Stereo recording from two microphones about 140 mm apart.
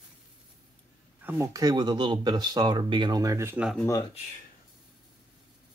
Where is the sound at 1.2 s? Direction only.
20° right (ahead or behind).